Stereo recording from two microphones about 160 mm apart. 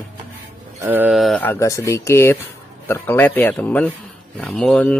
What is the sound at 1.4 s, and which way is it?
Speech, 20° left (ahead or behind).